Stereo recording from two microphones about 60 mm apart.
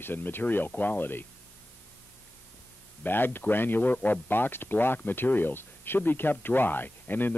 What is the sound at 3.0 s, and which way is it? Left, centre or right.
Speech, left.